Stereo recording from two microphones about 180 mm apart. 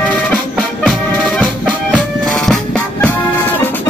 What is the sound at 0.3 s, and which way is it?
Music, centre (ahead or behind).